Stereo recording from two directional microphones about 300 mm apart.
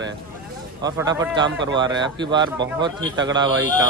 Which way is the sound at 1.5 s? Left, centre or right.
Right.